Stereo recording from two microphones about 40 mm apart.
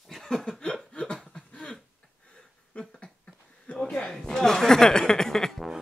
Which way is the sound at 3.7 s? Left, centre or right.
Left.